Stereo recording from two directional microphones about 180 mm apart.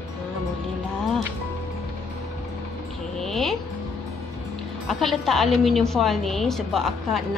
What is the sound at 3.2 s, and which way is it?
Music, centre (ahead or behind).